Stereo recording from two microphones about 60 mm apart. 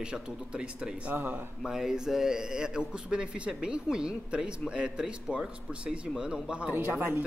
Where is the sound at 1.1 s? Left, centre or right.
Right.